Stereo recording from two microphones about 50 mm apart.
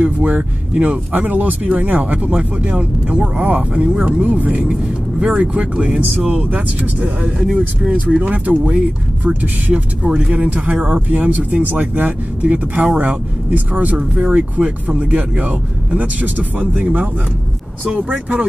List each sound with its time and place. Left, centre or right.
0.0 s speech: right
7.2 s speech: centre
8.1 s speech: right